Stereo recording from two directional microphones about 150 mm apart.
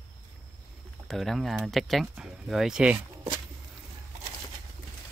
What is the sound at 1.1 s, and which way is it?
Speech, centre (ahead or behind).